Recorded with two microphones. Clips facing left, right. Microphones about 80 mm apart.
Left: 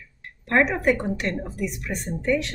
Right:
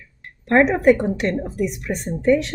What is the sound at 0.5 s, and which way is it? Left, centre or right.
A woman's voice, centre.